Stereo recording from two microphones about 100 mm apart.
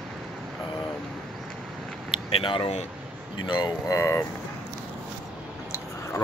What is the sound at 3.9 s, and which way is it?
Speech, 30° left (ahead or behind).